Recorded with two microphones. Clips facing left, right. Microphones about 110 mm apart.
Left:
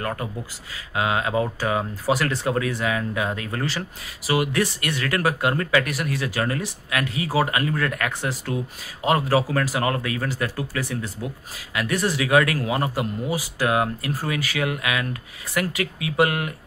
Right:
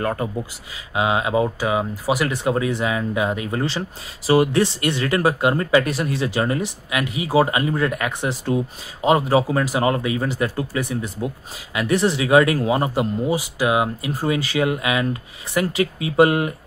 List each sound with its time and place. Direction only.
0.0 s speech: 25° right (ahead or behind)
4.3 s speech: 30° right (ahead or behind)